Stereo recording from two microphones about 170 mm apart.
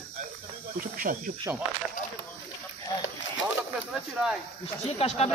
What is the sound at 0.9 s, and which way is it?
Speech, 55° right (ahead or behind).